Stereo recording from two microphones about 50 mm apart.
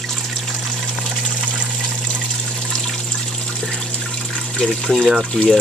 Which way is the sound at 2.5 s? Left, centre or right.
Centre.